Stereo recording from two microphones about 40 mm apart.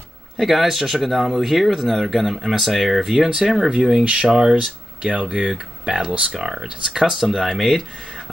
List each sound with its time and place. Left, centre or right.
0.4 s speech: centre
4.0 s speech: right
4.6 s speech: right
6.4 s speech: centre